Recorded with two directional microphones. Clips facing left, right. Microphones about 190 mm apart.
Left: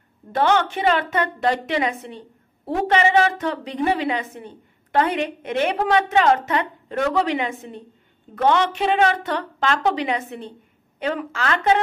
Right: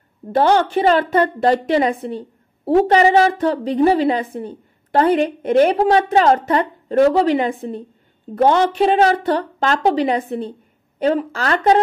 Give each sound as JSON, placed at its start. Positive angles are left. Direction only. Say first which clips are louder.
{"t": 0.3, "sound": "a woman's voice", "louder": "right 5 dB", "side_deg": -35}